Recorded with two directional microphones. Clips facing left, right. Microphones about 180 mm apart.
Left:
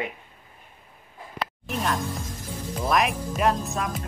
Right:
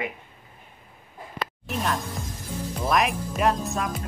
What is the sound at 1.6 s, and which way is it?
Speech, centre (ahead or behind).